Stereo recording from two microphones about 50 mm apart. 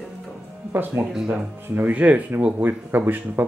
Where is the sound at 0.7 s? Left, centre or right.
Right.